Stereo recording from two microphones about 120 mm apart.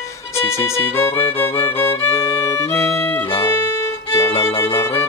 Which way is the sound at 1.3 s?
20° left (ahead or behind).